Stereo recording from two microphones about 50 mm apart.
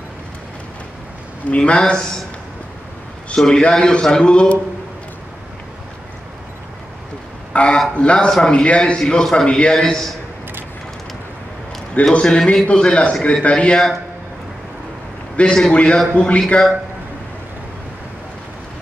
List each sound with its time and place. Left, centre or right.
1.5 s a man's voice: centre
3.3 s a man's voice: centre
7.5 s a man's voice: centre
8.9 s a man's voice: centre
12.1 s a man's voice: centre
15.3 s a man's voice: left